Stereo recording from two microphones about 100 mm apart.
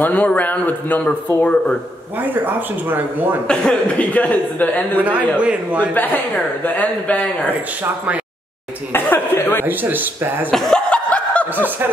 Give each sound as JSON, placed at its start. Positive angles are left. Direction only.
{"t": 0.0, "sound": "speech", "side_deg": 15}
{"t": 2.1, "sound": "speech", "side_deg": -20}
{"t": 3.4, "sound": "speech", "side_deg": 10}
{"t": 4.9, "sound": "a man's voice", "side_deg": -15}
{"t": 6.6, "sound": "speech", "side_deg": 15}
{"t": 8.9, "sound": "cough", "side_deg": 20}
{"t": 9.7, "sound": "speech", "side_deg": -20}
{"t": 10.5, "sound": "laughter", "side_deg": 5}
{"t": 11.5, "sound": "speech", "side_deg": -20}